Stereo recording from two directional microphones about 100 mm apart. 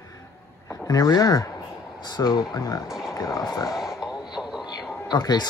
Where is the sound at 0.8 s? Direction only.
40° left (ahead or behind).